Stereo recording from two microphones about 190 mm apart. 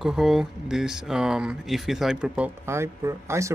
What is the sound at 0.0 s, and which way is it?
Speech, centre (ahead or behind).